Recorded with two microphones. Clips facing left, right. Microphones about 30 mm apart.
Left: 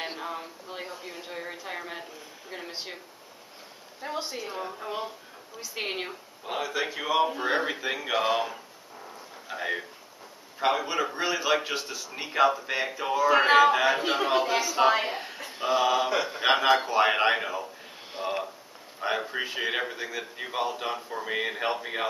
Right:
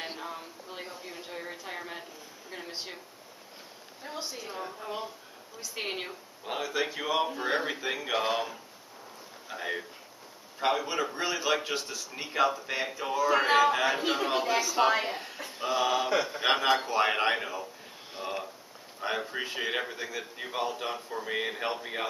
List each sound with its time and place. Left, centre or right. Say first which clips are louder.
0.0 s a man's voice: left 4 dB; centre
4.0 s a man's voice: left 5 dB; left
18.1 s a sound: left 5 dB; centre
18.9 s a man's voice: left 3 dB; centre